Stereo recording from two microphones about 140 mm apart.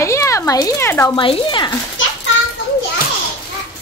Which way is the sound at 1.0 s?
35° left (ahead or behind).